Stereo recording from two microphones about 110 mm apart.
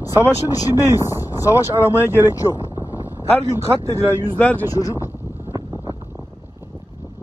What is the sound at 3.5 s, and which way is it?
Speech, 25° right (ahead or behind).